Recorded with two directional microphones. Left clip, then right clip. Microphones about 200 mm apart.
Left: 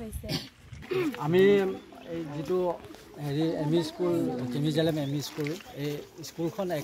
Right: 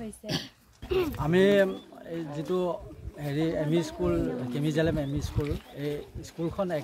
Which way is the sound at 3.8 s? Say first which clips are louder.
Even; 25° right (ahead or behind).